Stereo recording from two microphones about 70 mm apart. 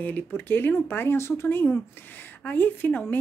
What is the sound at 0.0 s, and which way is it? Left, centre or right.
Speech, left.